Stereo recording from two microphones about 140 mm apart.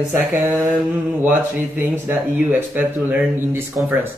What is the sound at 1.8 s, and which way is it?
Speech, 15° right (ahead or behind).